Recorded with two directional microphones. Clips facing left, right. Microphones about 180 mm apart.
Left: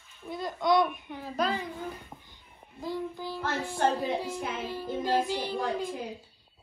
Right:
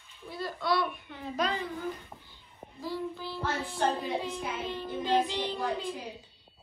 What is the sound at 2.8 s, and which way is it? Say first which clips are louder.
Child singing: left 1 dB; 15° left (ahead or behind).